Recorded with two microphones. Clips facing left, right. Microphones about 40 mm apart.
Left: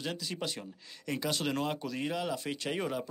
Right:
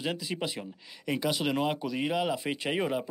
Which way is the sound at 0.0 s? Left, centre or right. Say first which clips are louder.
Right 4 dB; centre.